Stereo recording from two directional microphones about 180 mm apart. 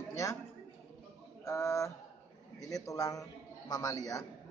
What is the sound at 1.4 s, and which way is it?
A man's voice, 15° left (ahead or behind).